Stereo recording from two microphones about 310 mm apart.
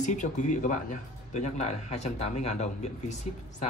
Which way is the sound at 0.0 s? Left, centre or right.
Left.